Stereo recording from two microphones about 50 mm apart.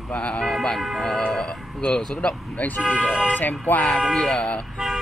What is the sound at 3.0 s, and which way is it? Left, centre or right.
Speech, centre.